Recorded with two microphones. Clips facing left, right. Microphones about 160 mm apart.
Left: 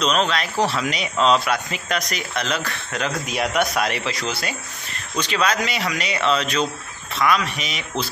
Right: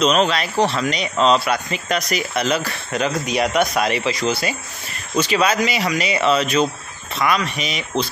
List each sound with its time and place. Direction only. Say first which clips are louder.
0.0 s speech: right 4 dB; centre (ahead or behind)